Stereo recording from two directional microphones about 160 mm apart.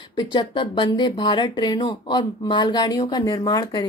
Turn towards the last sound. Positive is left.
turn(degrees=25)  # may be behind; listen again after turning